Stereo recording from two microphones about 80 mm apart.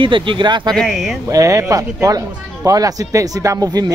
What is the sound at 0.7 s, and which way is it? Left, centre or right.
Speech, centre.